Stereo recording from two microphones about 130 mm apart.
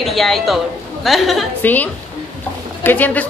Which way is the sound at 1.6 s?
15° left (ahead or behind).